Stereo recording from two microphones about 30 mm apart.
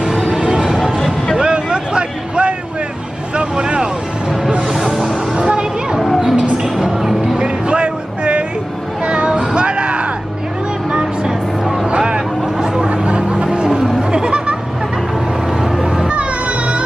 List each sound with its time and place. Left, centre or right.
0.0 s music: centre
0.4 s music: right
0.7 s music: centre
1.4 s vehicle: right
5.3 s a sound: right
6.3 s music: right
7.3 s a sound: right
9.0 s vehicle: right
10.9 s music: right
12.5 s a sound: right
13.0 s music: right
14.1 s a sound: right
15.8 s music: right